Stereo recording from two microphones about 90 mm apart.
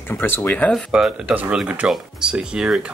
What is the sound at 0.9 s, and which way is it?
Speech, 10° right (ahead or behind).